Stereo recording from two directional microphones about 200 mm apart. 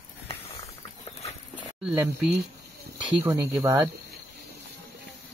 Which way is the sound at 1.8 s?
5° right (ahead or behind).